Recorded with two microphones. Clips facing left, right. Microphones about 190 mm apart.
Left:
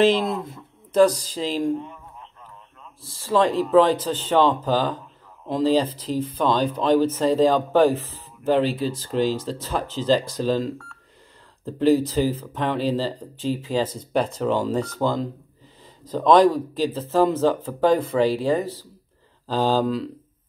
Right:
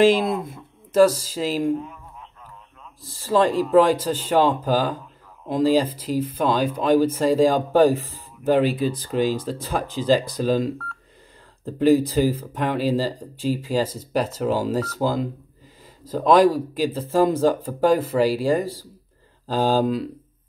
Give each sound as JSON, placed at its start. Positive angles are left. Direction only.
{"t": 0.0, "sound": "speech", "side_deg": -10}
{"t": 1.8, "sound": "a sound", "side_deg": 0}
{"t": 3.1, "sound": "speech", "side_deg": -40}
{"t": 3.7, "sound": "speech", "side_deg": -10}
{"t": 16.7, "sound": "speech", "side_deg": -10}